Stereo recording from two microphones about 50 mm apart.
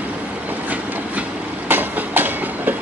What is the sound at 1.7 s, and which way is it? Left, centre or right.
Train, right.